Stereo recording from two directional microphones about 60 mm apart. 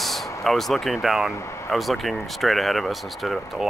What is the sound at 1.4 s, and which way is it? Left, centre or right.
Speech, left.